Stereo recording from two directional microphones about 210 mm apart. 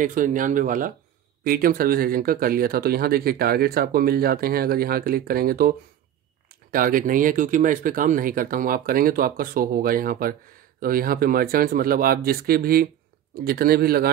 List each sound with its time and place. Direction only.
0.0 s speech: 40° right (ahead or behind)